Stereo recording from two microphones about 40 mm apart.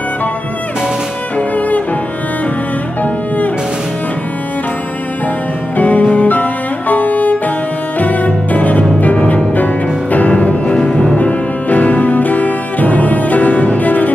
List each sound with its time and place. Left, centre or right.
3.0 s cello: left
5.8 s music: left
10.8 s music: left
11.1 s music: left